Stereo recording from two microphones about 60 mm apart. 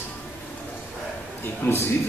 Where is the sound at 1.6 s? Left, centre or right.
Left.